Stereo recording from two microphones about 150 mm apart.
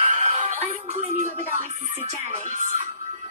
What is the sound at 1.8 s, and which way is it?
Music, 55° right (ahead or behind).